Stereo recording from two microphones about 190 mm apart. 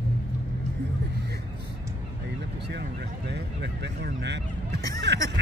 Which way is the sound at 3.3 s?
60° right (ahead or behind).